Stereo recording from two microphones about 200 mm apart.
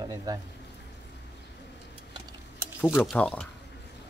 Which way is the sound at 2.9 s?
Centre (ahead or behind).